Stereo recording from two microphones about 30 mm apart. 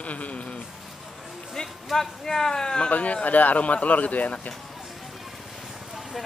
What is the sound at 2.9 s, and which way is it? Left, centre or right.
A man's voice, left.